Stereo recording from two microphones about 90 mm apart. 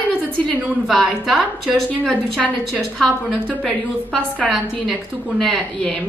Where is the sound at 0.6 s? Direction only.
Centre (ahead or behind).